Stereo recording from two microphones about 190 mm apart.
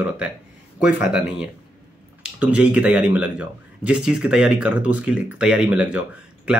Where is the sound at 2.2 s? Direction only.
5° right (ahead or behind).